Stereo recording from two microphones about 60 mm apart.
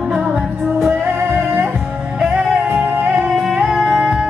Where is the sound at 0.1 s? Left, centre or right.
Centre.